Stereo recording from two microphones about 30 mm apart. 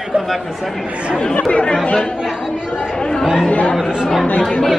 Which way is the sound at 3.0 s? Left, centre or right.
Left.